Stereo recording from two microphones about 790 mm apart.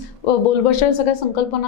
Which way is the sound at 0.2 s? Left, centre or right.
Left.